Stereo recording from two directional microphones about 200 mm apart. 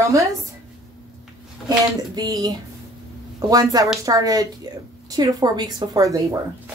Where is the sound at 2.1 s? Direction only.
20° right (ahead or behind).